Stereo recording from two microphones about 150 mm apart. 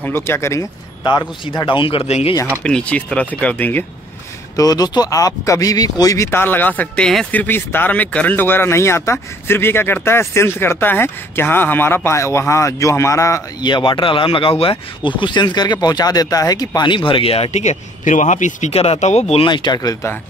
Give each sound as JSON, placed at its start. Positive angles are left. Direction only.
{"t": 0.0, "sound": "speech", "side_deg": 15}
{"t": 1.4, "sound": "speech", "side_deg": 30}
{"t": 2.6, "sound": "speech", "side_deg": 5}
{"t": 4.6, "sound": "speech", "side_deg": 25}
{"t": 19.4, "sound": "speech", "side_deg": 30}